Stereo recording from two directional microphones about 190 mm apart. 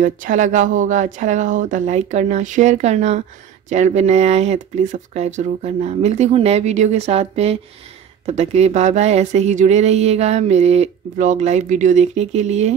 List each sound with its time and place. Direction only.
0.0 s speech: 45° right (ahead or behind)